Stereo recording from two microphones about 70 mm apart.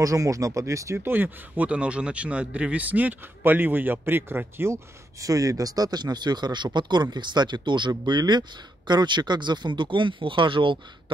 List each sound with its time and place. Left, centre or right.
0.0 s speech: right
0.9 s speech: right
5.2 s speech: right